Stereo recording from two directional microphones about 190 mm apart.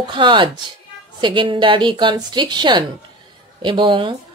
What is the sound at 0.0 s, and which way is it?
Speech, 25° right (ahead or behind).